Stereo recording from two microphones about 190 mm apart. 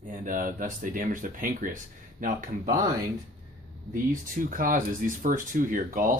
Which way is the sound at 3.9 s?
45° right (ahead or behind).